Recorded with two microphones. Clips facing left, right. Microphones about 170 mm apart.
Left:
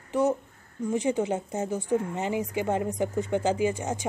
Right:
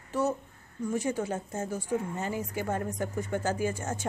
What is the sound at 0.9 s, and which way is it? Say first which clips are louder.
Speech: left 4 dB; 20° left (ahead or behind).